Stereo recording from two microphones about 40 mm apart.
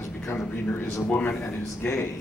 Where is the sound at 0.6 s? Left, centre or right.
Left.